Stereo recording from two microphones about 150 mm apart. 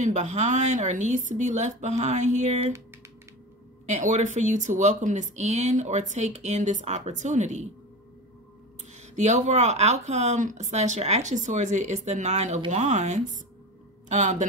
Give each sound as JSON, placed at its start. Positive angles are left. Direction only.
{"t": 0.0, "sound": "speech", "side_deg": -50}
{"t": 3.8, "sound": "speech", "side_deg": -50}
{"t": 9.1, "sound": "speech", "side_deg": -55}